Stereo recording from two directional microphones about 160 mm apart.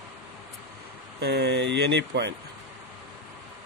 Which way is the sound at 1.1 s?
90° right.